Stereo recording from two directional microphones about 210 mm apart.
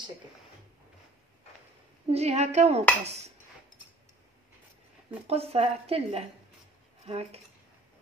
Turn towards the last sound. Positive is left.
turn(degrees=-30)  # may be behind; listen again after turning